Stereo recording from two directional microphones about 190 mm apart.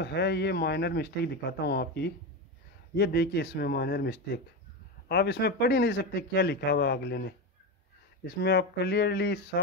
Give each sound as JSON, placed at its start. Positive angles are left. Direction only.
{"t": 0.0, "sound": "speech", "side_deg": 60}